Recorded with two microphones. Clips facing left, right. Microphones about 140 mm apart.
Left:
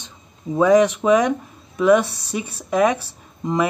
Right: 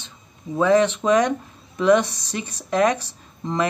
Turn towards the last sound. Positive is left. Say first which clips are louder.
# left 3 dB
turn(degrees=10)  # may be behind; listen again after turning